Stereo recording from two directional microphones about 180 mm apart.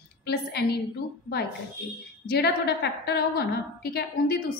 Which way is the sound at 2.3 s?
65° left (ahead or behind).